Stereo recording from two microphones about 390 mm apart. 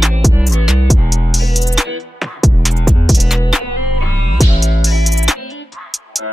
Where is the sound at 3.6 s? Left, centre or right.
Left.